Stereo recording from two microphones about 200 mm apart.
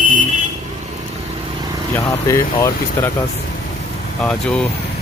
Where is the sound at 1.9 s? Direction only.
15° left (ahead or behind).